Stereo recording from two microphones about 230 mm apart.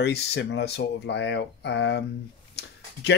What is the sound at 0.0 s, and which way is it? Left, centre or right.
Speech, left.